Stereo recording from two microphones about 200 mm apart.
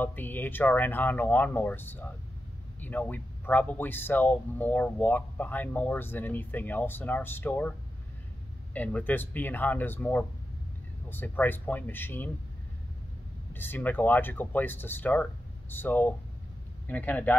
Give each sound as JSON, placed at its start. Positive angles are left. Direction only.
{"t": 0.0, "sound": "speech", "side_deg": 10}
{"t": 8.7, "sound": "speech", "side_deg": 5}
{"t": 13.5, "sound": "speech", "side_deg": 10}